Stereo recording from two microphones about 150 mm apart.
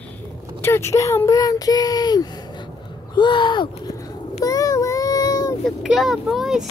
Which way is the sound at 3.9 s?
25° left (ahead or behind).